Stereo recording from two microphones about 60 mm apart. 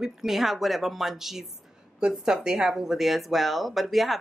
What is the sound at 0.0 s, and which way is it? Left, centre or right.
Speech, centre.